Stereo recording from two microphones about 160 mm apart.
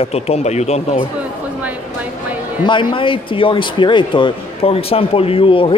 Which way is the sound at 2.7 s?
30° left (ahead or behind).